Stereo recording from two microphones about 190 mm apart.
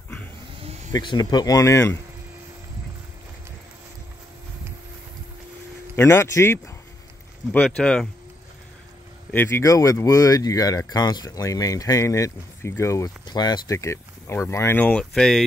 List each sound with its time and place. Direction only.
0.9 s speech: 20° left (ahead or behind)
5.9 s speech: 15° left (ahead or behind)
9.3 s speech: 10° left (ahead or behind)